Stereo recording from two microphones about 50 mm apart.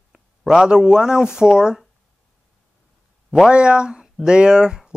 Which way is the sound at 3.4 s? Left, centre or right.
Centre.